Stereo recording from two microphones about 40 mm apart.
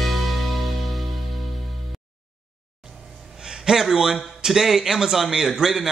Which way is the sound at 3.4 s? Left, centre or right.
Centre.